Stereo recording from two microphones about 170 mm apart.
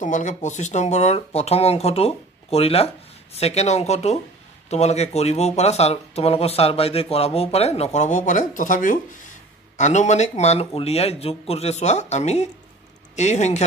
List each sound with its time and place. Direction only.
0.0 s speech: 45° left (ahead or behind)